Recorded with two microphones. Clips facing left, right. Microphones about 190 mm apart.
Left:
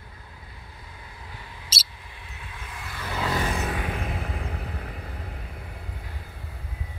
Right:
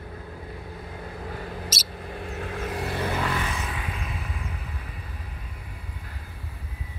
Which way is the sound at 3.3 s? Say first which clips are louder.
Left 3 dB; 40° left (ahead or behind).